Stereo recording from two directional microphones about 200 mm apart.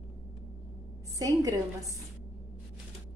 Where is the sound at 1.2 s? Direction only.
15° right (ahead or behind).